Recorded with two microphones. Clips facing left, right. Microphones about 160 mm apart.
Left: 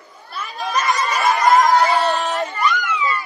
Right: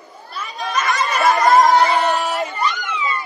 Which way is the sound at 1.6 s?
20° right (ahead or behind).